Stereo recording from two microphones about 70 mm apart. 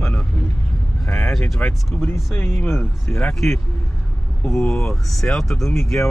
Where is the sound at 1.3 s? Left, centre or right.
Centre.